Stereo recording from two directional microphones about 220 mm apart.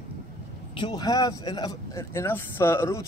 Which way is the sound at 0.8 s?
20° left (ahead or behind).